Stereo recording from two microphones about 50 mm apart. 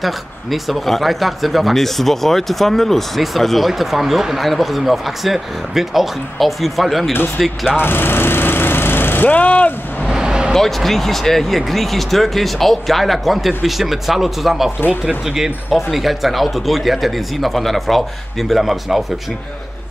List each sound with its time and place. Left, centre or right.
0.0 s speech: centre
7.8 s vehicle: left
9.3 s speech: left
10.0 s a sound: centre
10.5 s speech: centre